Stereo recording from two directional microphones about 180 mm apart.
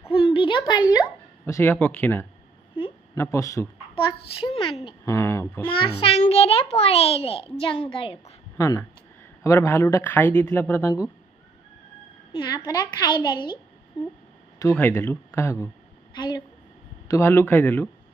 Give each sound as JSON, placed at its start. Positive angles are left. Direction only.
{"t": 0.1, "sound": "a sound", "side_deg": 30}
{"t": 1.0, "sound": "speech", "side_deg": 15}
{"t": 3.9, "sound": "a woman's voice", "side_deg": 30}
{"t": 5.1, "sound": "speech", "side_deg": 15}
{"t": 5.8, "sound": "a child's voice", "side_deg": 30}
{"t": 8.5, "sound": "speech", "side_deg": 15}
{"t": 12.3, "sound": "a woman's voice", "side_deg": 20}
{"t": 14.6, "sound": "a woman's voice", "side_deg": 15}
{"t": 17.1, "sound": "speech", "side_deg": 15}